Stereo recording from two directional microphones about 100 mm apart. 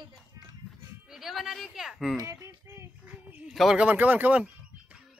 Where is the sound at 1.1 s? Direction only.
5° right (ahead or behind).